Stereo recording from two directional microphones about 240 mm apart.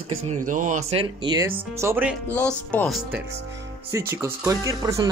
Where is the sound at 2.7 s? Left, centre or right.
Centre.